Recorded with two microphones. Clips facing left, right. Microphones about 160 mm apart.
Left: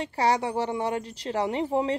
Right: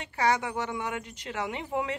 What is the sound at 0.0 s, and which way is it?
Speech, 35° left (ahead or behind).